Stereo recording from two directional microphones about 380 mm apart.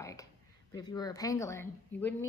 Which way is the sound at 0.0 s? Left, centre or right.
Centre.